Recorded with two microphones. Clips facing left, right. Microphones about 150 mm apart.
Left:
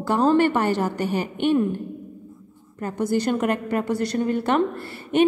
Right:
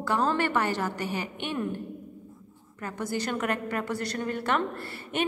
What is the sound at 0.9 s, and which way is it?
Speech, 55° left (ahead or behind).